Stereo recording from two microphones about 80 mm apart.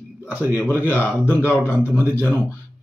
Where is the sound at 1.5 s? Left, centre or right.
Centre.